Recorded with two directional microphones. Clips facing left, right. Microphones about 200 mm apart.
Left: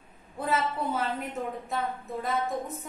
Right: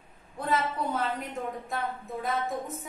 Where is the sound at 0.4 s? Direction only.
5° left (ahead or behind).